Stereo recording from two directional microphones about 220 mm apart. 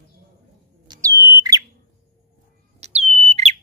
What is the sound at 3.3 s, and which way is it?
Smoke detector, 30° right (ahead or behind).